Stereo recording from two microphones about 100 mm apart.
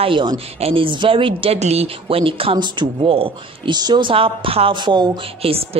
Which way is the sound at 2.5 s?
50° right (ahead or behind).